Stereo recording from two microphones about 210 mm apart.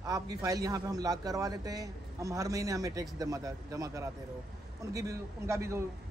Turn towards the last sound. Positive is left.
turn(degrees=-15)  # may be behind; listen again after turning